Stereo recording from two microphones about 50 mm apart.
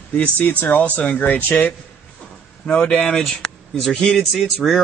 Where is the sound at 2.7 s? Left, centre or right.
Left.